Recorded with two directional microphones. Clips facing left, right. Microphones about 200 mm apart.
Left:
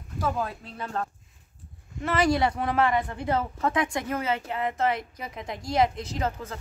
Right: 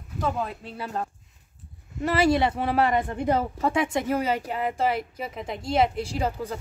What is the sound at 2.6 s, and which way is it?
Speech, 35° right (ahead or behind).